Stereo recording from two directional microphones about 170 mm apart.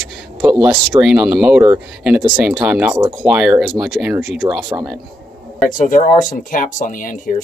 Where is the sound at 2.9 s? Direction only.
20° right (ahead or behind).